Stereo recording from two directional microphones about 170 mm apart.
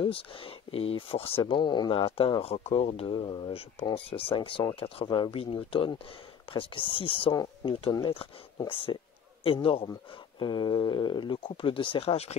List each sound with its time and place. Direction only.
0.0 s speech: 30° left (ahead or behind)